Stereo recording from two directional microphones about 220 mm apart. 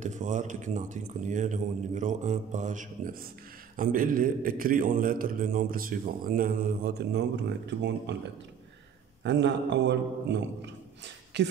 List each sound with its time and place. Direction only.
0.0 s a man's voice: 35° right (ahead or behind); by 11.5 s 50° right (ahead or behind)